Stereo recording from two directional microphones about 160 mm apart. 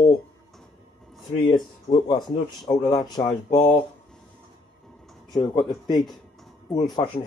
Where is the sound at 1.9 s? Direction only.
25° left (ahead or behind).